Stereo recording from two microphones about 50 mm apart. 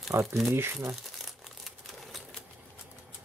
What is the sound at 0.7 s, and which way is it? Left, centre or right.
Crumpling, centre.